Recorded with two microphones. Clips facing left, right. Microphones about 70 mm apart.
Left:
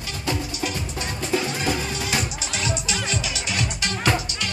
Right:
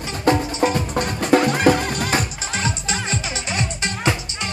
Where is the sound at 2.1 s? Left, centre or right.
Right.